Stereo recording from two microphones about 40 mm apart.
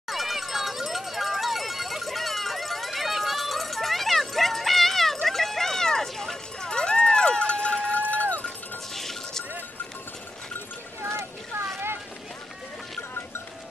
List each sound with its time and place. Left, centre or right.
0.1 s run: centre
6.7 s run: left
8.9 s chink: centre
11.0 s clip-clop: right